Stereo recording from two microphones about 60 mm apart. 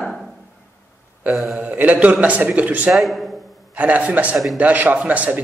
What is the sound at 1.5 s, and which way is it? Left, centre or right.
Speech, right.